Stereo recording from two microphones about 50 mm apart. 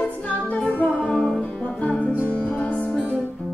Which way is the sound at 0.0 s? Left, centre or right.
Left.